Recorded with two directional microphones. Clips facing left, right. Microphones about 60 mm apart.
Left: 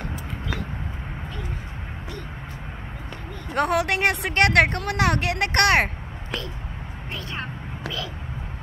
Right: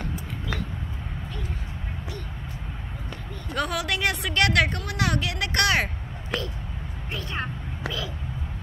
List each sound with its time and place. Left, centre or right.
3.5 s a woman's voice: left
7.3 s whispering: centre